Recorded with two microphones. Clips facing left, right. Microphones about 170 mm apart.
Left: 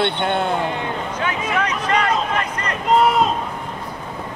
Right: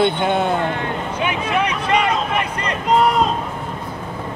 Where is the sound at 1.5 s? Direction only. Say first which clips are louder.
Right 2 dB; 10° right (ahead or behind).